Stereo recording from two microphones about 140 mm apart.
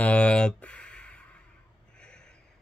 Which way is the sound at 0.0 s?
10° left (ahead or behind).